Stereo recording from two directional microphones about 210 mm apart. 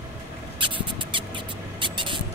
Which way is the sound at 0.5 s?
25° right (ahead or behind).